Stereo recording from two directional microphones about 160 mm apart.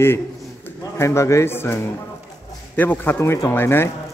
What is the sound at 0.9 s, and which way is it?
A man's voice, 20° left (ahead or behind).